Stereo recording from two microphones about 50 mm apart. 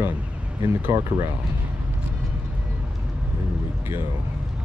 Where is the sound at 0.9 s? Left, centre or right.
Right.